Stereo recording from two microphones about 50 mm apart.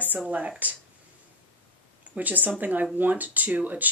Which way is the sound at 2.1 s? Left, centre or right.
Right.